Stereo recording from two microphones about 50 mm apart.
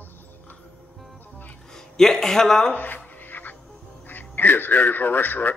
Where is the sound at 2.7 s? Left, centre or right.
Left.